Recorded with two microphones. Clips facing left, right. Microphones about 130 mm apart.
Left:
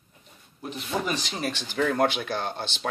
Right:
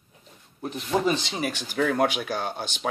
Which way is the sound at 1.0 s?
25° right (ahead or behind).